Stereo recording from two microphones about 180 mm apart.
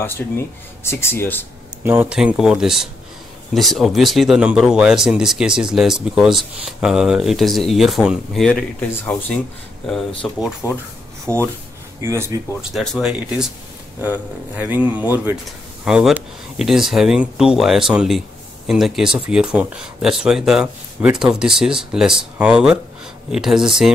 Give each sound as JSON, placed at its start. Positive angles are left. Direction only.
{"t": 0.2, "sound": "speech", "side_deg": 5}
{"t": 1.8, "sound": "speech", "side_deg": -10}
{"t": 12.0, "sound": "speech", "side_deg": -15}
{"t": 12.7, "sound": "speech", "side_deg": -5}